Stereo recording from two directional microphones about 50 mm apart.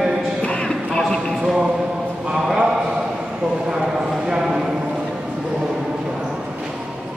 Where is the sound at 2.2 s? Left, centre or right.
Centre.